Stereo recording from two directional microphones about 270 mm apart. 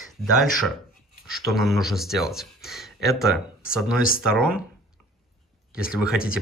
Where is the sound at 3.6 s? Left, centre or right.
Left.